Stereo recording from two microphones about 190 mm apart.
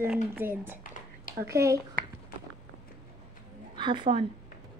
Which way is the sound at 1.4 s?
15° right (ahead or behind).